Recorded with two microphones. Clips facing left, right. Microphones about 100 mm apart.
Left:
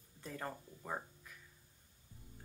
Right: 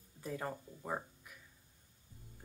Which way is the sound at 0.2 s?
10° right (ahead or behind).